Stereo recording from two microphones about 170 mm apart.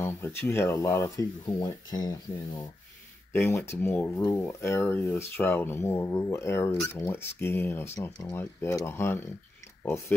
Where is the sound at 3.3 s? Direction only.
15° left (ahead or behind).